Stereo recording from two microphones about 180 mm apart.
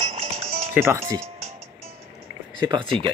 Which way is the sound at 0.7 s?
15° right (ahead or behind).